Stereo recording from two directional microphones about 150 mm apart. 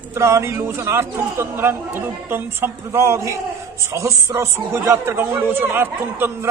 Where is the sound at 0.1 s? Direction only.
20° right (ahead or behind).